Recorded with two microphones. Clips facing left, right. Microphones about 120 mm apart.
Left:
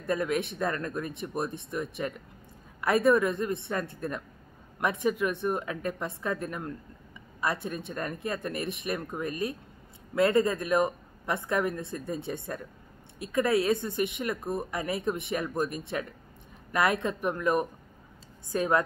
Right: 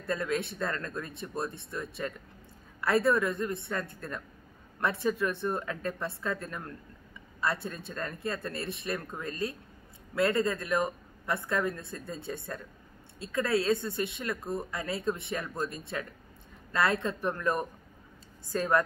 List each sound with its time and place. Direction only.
0.0 s a woman's voice: 20° left (ahead or behind)